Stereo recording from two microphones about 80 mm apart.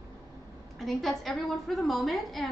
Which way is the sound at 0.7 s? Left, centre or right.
Centre.